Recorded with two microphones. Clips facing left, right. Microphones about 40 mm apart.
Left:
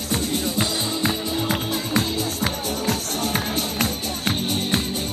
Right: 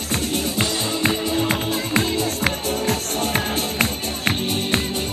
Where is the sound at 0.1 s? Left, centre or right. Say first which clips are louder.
Right 1 dB; right.